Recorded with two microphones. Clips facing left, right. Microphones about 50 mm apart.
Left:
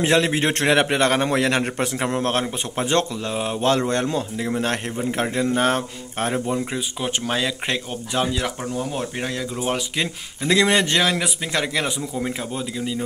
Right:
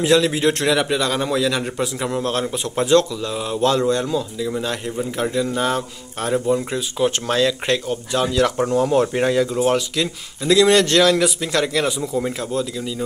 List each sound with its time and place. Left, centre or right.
0.0 s a man's voice: left
6.5 s speech: centre
8.8 s speech: centre
9.9 s speech: left